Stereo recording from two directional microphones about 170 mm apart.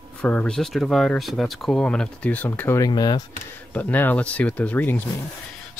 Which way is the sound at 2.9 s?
25° left (ahead or behind).